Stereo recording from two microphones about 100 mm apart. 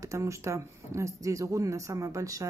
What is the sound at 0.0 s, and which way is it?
Speech, 30° right (ahead or behind).